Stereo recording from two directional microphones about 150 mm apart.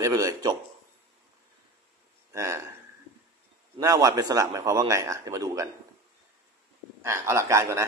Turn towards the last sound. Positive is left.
turn(degrees=-20)  # may be behind; listen again after turning